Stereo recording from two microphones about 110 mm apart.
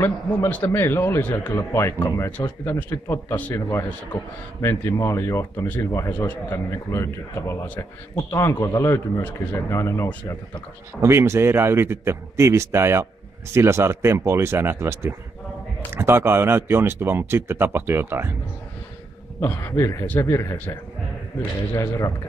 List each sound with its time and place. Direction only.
0.0 s speech: 20° left (ahead or behind)
2.3 s speech: 15° left (ahead or behind)
3.3 s a man's voice: 15° left (ahead or behind)
4.6 s speech: 25° left (ahead or behind)
11.0 s speech: 25° right (ahead or behind)
19.4 s speech: 20° left (ahead or behind)
21.7 s speech: 25° left (ahead or behind)